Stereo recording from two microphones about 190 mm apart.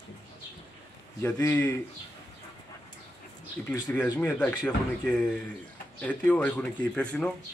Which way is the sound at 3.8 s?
15° left (ahead or behind).